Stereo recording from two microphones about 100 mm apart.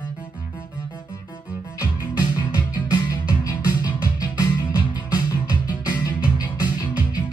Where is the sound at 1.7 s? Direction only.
40° left (ahead or behind).